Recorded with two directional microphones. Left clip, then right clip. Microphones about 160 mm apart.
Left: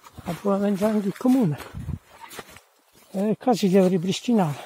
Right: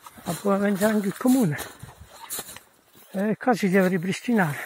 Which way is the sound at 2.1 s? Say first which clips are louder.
Right 4 dB; 90° right.